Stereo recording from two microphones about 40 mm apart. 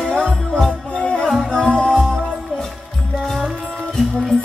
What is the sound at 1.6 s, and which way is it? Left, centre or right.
Music, left.